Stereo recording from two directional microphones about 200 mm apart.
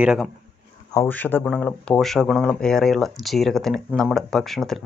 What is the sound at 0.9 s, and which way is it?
Speech, 10° left (ahead or behind).